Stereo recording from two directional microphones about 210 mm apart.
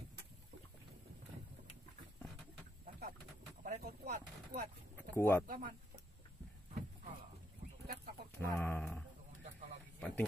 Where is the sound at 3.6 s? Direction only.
40° right (ahead or behind).